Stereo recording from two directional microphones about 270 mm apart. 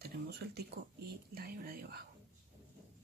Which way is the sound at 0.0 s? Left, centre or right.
Right.